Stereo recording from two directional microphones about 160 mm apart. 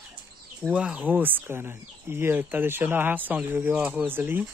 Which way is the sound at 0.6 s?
5° right (ahead or behind).